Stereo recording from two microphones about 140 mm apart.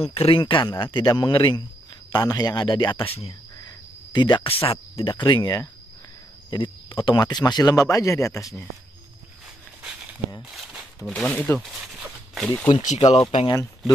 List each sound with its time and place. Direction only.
0.0 s speech: 45° left (ahead or behind)
3.6 s cricket: 30° left (ahead or behind)
4.9 s speech: 35° left (ahead or behind)
9.8 s a sound: 10° right (ahead or behind)
11.1 s speech: 10° left (ahead or behind)
11.6 s walk: 5° right (ahead or behind)
13.1 s speech: 50° left (ahead or behind)
13.5 s speech: 25° left (ahead or behind)